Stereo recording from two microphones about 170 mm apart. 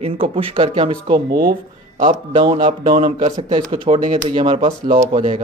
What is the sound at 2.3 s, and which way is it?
Speech, 30° right (ahead or behind).